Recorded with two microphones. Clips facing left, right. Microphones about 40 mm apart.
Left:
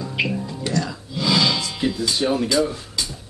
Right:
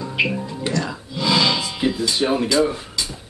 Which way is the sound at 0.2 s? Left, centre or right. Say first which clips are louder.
Right 3 dB; centre.